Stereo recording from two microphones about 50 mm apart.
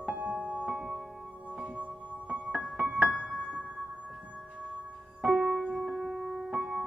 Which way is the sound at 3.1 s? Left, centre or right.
Centre.